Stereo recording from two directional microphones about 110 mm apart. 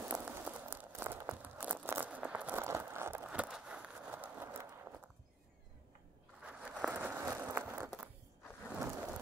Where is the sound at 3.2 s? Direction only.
10° right (ahead or behind).